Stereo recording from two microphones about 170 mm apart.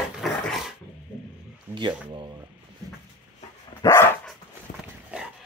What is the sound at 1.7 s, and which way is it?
Speech, 25° right (ahead or behind).